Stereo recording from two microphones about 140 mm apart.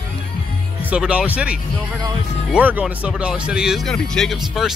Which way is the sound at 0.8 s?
10° right (ahead or behind).